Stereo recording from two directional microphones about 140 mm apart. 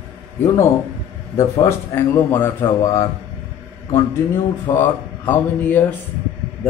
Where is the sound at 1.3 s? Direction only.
20° left (ahead or behind).